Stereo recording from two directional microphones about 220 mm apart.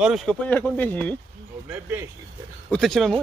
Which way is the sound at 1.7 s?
10° right (ahead or behind).